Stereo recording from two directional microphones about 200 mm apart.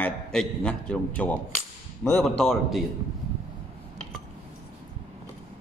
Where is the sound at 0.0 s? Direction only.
5° left (ahead or behind).